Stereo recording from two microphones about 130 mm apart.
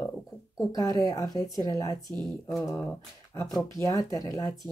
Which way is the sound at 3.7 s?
25° left (ahead or behind).